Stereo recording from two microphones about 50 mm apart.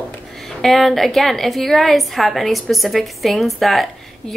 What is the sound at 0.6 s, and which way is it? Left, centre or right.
Speech, centre.